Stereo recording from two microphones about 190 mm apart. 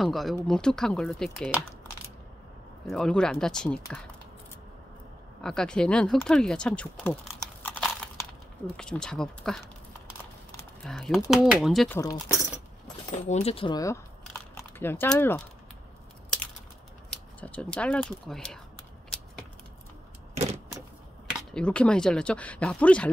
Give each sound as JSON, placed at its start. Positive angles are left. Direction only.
{"t": 0.0, "sound": "speech", "side_deg": 0}
{"t": 2.9, "sound": "speech", "side_deg": 5}
{"t": 5.4, "sound": "speech", "side_deg": 5}
{"t": 7.6, "sound": "a sound", "side_deg": 5}
{"t": 8.7, "sound": "speech", "side_deg": 5}
{"t": 10.9, "sound": "speech", "side_deg": 0}
{"t": 11.9, "sound": "speech", "side_deg": 15}
{"t": 12.8, "sound": "a sound", "side_deg": 35}
{"t": 17.1, "sound": "speech", "side_deg": 5}
{"t": 21.3, "sound": "speech", "side_deg": 5}